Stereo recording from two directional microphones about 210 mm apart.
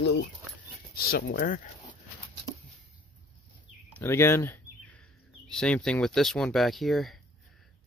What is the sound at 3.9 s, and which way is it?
Speech, 10° left (ahead or behind).